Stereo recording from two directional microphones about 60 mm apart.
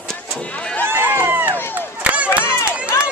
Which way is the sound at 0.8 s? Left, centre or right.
Right.